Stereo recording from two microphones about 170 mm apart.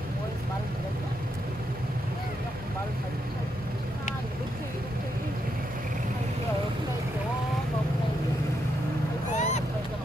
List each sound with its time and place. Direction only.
9.3 s vehicle: 45° left (ahead or behind)